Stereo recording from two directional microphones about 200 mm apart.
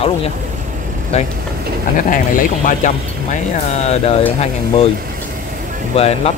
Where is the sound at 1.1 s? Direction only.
30° left (ahead or behind).